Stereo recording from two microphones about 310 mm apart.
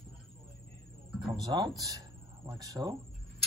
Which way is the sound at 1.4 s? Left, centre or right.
Centre.